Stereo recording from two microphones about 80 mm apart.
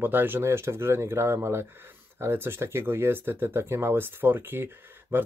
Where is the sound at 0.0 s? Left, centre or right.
Right.